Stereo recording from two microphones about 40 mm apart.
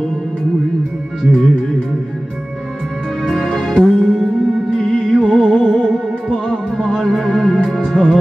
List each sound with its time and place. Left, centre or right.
1.2 s music: centre
3.3 s music: centre